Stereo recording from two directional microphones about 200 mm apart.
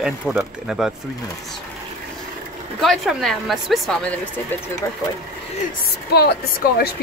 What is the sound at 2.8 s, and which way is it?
A woman's voice, centre (ahead or behind).